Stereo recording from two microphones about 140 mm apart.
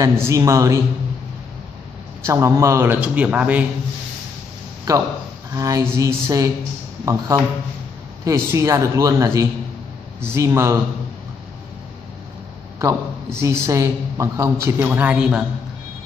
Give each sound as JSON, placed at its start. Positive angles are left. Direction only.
{"t": 0.0, "sound": "a man's voice", "side_deg": -25}
{"t": 2.2, "sound": "speech", "side_deg": -20}
{"t": 5.5, "sound": "a man's voice", "side_deg": -25}
{"t": 12.7, "sound": "a man's voice", "side_deg": -20}